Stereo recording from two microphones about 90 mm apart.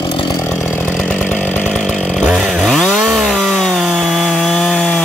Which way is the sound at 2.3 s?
5° right (ahead or behind).